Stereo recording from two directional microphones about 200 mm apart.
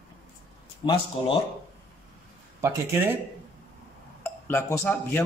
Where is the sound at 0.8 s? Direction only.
25° left (ahead or behind).